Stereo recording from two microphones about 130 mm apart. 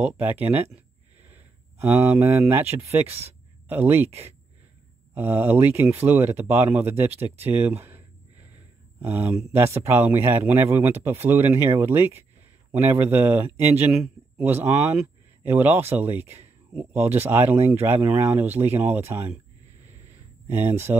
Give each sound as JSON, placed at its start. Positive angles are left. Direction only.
{"t": 0.0, "sound": "speech", "side_deg": -10}
{"t": 1.2, "sound": "a sound", "side_deg": -15}
{"t": 2.4, "sound": "speech", "side_deg": -15}
{"t": 5.1, "sound": "speech", "side_deg": -15}
{"t": 9.0, "sound": "speech", "side_deg": -15}
{"t": 20.4, "sound": "speech", "side_deg": -20}